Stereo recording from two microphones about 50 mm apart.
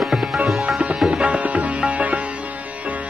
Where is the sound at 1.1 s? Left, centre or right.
Right.